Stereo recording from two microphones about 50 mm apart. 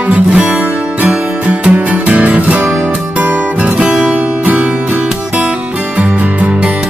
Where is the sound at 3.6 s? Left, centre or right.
Centre.